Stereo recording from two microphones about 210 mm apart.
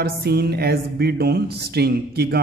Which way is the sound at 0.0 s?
50° right (ahead or behind).